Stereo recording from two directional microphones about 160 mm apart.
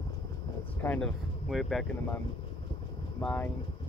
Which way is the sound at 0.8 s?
5° left (ahead or behind).